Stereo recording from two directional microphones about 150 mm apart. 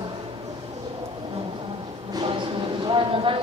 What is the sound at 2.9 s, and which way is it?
Speech, 35° right (ahead or behind).